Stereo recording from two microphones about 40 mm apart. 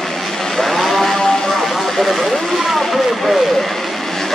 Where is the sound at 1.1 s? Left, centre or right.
Centre.